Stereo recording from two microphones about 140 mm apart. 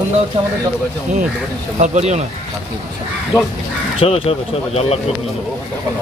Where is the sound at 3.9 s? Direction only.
45° left (ahead or behind).